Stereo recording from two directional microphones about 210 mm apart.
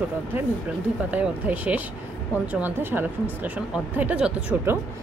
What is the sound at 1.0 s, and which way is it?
Speech, 5° right (ahead or behind).